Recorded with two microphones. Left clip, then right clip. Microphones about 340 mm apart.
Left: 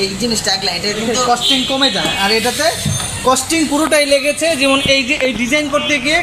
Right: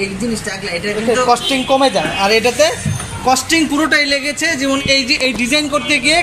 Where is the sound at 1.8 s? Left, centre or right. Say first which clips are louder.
Right 1 dB; centre.